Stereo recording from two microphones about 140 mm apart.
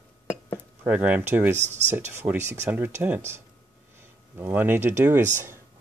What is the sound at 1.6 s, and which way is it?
Speech, 55° right (ahead or behind).